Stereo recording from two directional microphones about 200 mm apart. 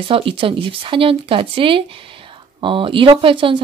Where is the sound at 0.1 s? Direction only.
25° right (ahead or behind).